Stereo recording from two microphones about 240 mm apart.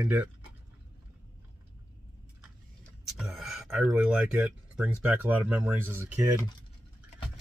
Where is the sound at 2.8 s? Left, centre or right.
Centre.